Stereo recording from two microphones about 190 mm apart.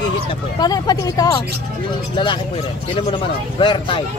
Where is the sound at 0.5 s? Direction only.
20° left (ahead or behind).